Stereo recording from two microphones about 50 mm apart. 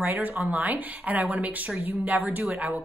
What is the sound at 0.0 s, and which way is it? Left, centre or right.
Speech, right.